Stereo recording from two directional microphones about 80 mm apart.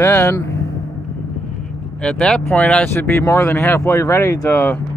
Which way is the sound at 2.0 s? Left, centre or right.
Centre.